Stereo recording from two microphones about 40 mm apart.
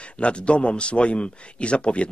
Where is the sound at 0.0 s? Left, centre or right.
Left.